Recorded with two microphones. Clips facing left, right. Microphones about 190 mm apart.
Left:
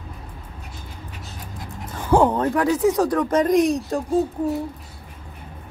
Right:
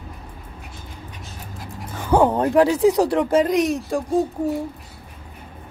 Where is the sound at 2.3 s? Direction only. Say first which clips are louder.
Right 4 dB; 15° right (ahead or behind).